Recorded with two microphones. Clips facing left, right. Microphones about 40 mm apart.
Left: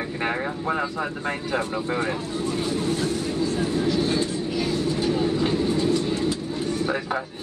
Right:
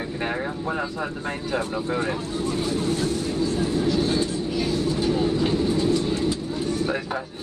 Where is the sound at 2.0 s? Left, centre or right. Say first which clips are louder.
Even; centre.